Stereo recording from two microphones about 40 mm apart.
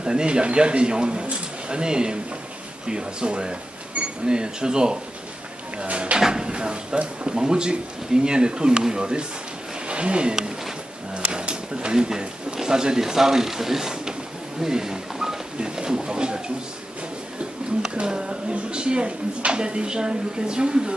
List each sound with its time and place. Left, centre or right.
0.0 s speech: right
6.1 s speech: centre
17.9 s speech: right